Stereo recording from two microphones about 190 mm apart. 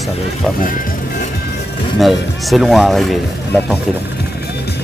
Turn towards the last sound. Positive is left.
turn(degrees=0)  # may be behind; listen again after turning